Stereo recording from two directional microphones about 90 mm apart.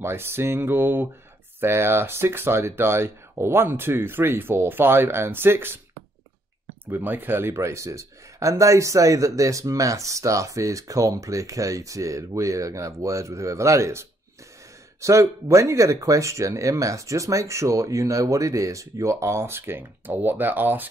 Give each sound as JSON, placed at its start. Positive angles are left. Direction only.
{"t": 0.0, "sound": "speech", "side_deg": -25}
{"t": 6.9, "sound": "speech", "side_deg": -20}